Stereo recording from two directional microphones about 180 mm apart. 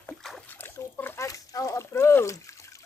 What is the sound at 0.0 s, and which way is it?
Splash, 5° left (ahead or behind).